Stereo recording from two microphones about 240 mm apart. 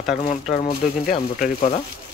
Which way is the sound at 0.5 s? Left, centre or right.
Left.